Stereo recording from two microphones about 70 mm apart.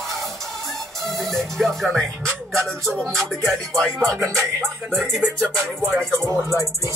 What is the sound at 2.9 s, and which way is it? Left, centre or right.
Music, centre.